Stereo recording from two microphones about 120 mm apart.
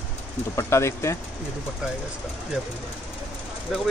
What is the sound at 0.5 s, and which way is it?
Speech, 25° left (ahead or behind).